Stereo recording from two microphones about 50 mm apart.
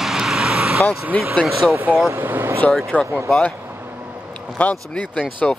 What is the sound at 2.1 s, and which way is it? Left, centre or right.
Speech, right.